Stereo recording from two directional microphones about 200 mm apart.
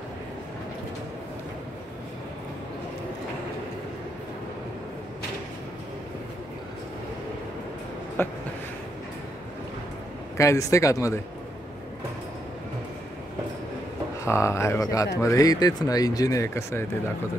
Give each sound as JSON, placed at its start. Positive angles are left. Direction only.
{"t": 8.2, "sound": "a sound", "side_deg": 10}
{"t": 10.3, "sound": "speech", "side_deg": 15}
{"t": 14.2, "sound": "speech", "side_deg": 15}